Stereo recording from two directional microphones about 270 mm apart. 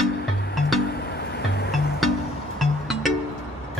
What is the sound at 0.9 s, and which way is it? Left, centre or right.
Music, left.